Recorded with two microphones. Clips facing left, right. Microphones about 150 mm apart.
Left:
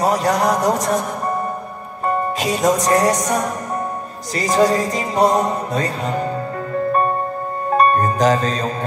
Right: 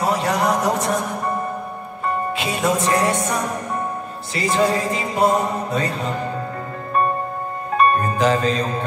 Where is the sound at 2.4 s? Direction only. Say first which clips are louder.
Left 3 dB; 40° left (ahead or behind).